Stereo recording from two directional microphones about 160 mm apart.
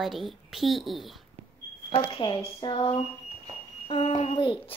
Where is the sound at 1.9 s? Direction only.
35° left (ahead or behind).